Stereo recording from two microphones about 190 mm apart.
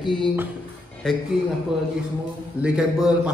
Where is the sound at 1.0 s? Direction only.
5° left (ahead or behind).